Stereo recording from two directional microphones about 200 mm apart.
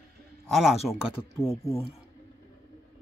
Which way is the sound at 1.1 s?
30° left (ahead or behind).